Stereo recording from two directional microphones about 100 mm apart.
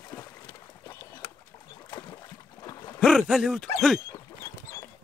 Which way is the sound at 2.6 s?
45° left (ahead or behind).